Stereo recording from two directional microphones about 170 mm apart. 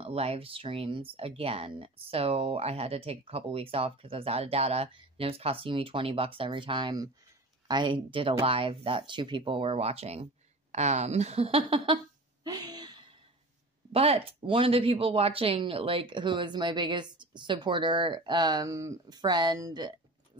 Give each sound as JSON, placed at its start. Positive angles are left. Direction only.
{"t": 0.0, "sound": "speech", "side_deg": -35}
{"t": 12.4, "sound": "a sound", "side_deg": -25}
{"t": 13.9, "sound": "speech", "side_deg": -35}